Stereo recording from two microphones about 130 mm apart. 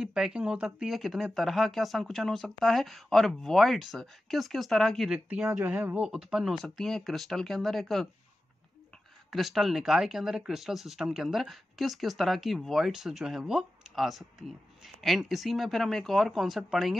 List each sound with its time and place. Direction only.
0.0 s speech: 5° right (ahead or behind)
5.5 s speech: 20° right (ahead or behind); by 8.1 s centre (ahead or behind)
9.3 s speech: centre (ahead or behind)